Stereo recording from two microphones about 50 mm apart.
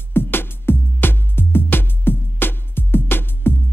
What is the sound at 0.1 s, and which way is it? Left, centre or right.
Music, left.